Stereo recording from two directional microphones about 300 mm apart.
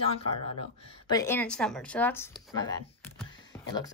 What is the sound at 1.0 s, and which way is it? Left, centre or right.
A woman's voice, centre.